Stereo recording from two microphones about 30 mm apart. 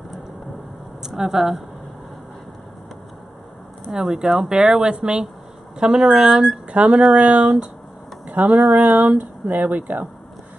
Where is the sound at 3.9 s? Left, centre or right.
Centre.